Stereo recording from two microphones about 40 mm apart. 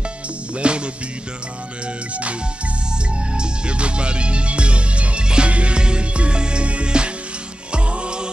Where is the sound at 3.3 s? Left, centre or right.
Right.